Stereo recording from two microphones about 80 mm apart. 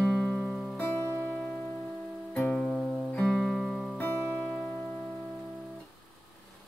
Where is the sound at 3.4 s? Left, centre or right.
Centre.